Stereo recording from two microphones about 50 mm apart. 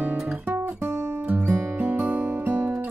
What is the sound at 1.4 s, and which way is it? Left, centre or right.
Music, right.